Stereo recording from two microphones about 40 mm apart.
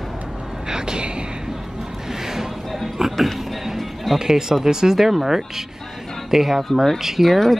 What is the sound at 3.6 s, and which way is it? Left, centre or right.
Music, centre.